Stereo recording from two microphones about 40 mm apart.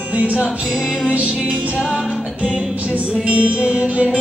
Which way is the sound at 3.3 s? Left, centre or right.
Right.